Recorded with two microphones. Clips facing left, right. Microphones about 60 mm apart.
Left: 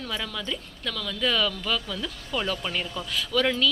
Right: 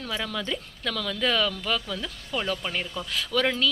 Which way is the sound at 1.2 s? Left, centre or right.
Right.